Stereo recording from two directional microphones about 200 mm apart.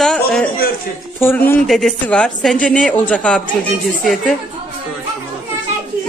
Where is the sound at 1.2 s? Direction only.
10° left (ahead or behind).